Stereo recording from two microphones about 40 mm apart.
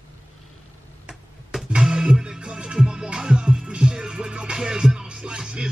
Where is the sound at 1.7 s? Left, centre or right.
Centre.